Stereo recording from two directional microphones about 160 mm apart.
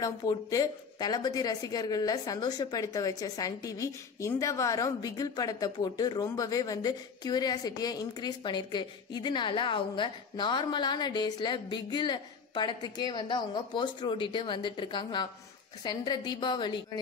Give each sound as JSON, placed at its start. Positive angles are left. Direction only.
{"t": 0.0, "sound": "a woman's voice", "side_deg": 20}